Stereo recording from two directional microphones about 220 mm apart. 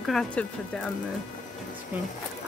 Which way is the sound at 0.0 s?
Centre (ahead or behind).